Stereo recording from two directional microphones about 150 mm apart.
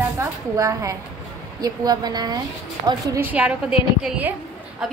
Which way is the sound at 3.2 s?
10° right (ahead or behind).